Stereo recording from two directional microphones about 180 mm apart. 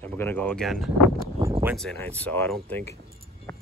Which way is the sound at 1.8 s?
5° left (ahead or behind).